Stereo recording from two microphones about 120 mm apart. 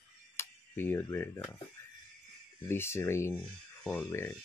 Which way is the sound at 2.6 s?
20° left (ahead or behind).